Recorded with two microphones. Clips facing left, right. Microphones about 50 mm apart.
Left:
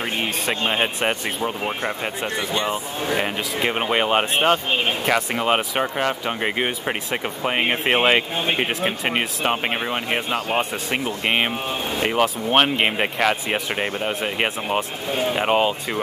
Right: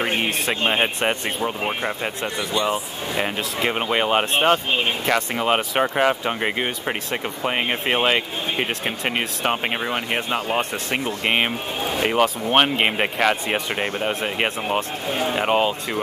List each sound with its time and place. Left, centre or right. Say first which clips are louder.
0.5 s speech: even; centre
2.5 s speech: right 3 dB; left
3.2 s speech: right 4 dB; centre
5.9 s speech: right 3 dB; centre
6.4 s speech: left 1 dB; centre